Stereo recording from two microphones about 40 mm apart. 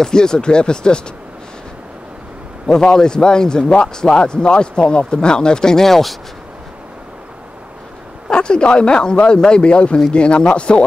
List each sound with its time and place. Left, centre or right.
0.0 s speech: centre
2.6 s speech: centre
8.3 s speech: left